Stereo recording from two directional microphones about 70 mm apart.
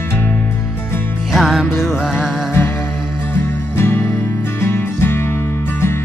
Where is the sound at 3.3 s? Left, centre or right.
Left.